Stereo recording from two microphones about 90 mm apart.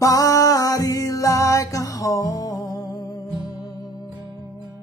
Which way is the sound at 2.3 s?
45° left (ahead or behind).